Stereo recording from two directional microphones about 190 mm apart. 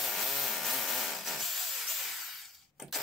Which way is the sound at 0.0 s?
Centre (ahead or behind).